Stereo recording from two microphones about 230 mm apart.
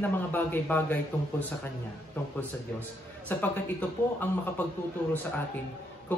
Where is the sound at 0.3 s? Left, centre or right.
Centre.